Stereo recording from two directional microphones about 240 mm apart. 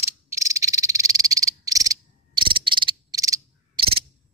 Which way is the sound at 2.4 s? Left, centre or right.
Centre.